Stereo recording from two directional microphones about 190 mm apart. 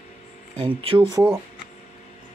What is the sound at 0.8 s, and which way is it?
Speech, 25° right (ahead or behind).